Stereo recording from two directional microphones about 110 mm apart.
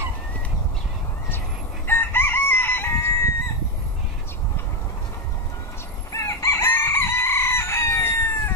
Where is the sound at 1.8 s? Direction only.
20° left (ahead or behind).